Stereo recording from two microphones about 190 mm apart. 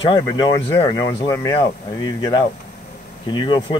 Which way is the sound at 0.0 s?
25° left (ahead or behind).